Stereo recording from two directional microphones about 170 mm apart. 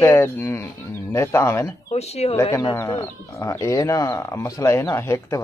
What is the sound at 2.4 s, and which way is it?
A man's voice, 15° left (ahead or behind).